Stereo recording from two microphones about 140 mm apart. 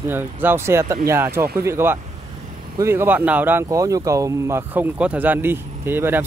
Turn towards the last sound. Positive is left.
turn(degrees=-15)  # may be behind; listen again after turning